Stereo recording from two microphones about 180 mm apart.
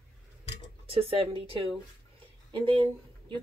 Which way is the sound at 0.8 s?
30° right (ahead or behind).